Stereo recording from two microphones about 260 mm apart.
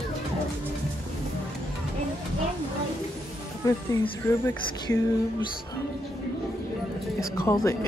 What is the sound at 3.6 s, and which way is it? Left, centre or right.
Speech, centre.